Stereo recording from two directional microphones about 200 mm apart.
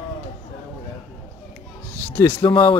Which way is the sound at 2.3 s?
25° left (ahead or behind).